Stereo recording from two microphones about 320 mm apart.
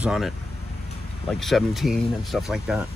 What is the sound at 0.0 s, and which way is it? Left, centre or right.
Speech, centre.